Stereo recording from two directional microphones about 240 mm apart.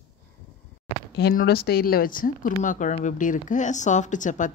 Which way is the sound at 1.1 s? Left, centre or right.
Left.